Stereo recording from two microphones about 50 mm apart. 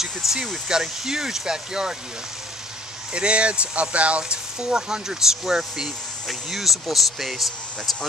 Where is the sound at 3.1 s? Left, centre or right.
Right; by 7.5 s centre.